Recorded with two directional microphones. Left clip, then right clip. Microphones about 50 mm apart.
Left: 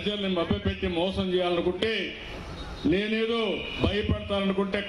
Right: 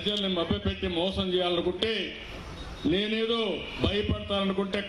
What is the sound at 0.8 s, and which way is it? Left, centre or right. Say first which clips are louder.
Speech: left 1 dB; left.